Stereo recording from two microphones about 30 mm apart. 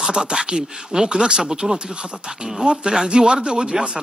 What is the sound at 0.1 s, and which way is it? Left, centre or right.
Speech, right.